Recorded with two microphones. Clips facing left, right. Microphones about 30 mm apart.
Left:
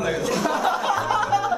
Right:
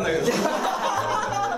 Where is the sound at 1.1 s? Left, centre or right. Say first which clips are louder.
Left 3 dB; left.